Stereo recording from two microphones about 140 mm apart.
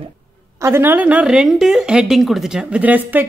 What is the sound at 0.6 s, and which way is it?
A woman's voice, 15° right (ahead or behind).